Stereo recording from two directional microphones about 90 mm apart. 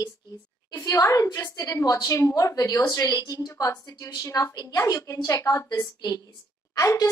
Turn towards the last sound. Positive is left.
turn(degrees=40)  # may be behind; listen again after turning